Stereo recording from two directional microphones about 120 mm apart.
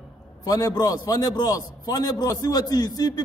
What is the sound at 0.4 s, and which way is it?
A man's voice, 30° left (ahead or behind).